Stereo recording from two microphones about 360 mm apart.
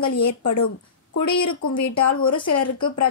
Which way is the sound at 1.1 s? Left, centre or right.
Left.